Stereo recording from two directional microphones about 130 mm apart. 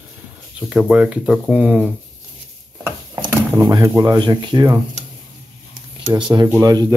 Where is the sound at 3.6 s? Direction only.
30° right (ahead or behind).